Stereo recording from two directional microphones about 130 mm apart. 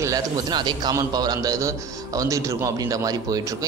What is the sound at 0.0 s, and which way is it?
A man's voice, 30° right (ahead or behind).